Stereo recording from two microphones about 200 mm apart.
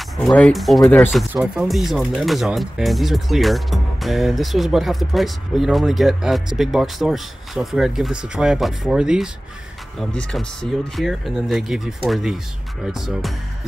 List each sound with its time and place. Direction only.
0.2 s speech: 5° left (ahead or behind)